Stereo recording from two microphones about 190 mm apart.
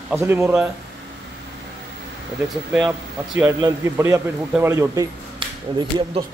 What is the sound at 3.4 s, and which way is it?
A man's voice, 15° right (ahead or behind).